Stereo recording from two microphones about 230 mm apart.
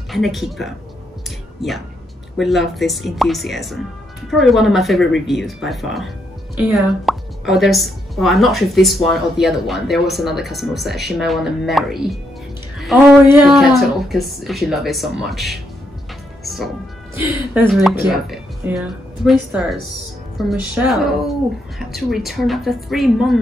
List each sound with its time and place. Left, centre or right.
0.1 s speech: centre
2.3 s speech: centre
16.4 s music: centre
17.6 s speech: centre